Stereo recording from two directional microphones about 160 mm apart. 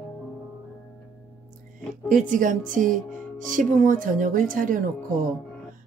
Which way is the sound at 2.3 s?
55° right (ahead or behind).